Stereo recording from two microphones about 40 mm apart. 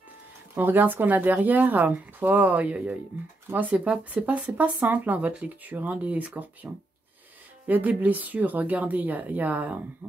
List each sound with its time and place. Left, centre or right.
0.6 s speech: right